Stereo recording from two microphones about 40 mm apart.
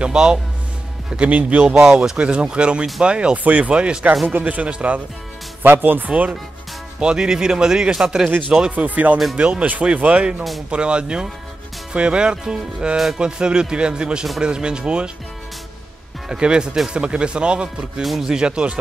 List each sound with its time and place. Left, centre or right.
0.0 s speech: right
1.1 s speech: right
3.4 s speech: right
4.3 s speech: right
5.6 s speech: right
6.0 s speech: right
7.0 s a man's voice: centre
8.3 s speech: right
16.3 s speech: right